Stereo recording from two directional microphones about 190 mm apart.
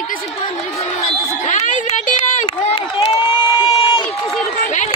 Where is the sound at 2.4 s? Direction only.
25° left (ahead or behind).